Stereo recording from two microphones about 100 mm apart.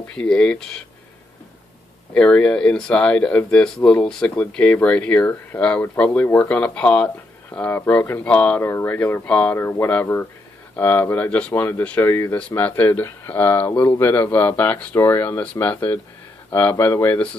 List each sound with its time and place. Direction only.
0.1 s speech: 10° left (ahead or behind)
2.1 s speech: 10° left (ahead or behind)